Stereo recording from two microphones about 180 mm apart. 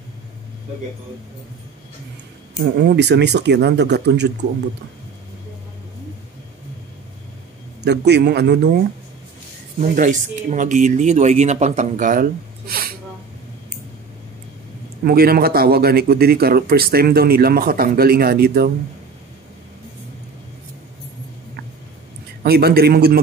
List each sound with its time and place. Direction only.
2.6 s speech: 70° right (ahead or behind)
7.8 s speech: 70° right (ahead or behind)
9.8 s speech: 45° right (ahead or behind)
15.0 s speech: 55° right (ahead or behind)
22.4 s speech: 60° right (ahead or behind)